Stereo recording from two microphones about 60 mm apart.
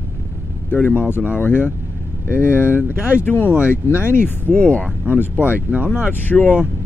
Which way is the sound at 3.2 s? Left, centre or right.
Left.